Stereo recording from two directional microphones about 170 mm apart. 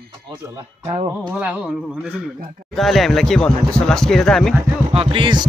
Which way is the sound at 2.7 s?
Centre (ahead or behind).